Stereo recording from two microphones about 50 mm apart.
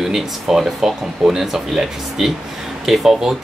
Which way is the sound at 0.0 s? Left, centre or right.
Centre.